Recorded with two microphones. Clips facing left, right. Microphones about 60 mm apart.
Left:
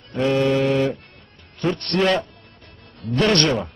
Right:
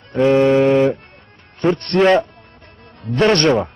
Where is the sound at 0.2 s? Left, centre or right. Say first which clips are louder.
Right 6 dB; right.